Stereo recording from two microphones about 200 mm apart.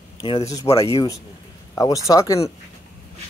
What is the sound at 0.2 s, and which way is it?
Speech, 20° left (ahead or behind).